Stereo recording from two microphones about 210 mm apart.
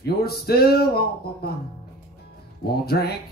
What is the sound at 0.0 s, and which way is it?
Music, 50° left (ahead or behind).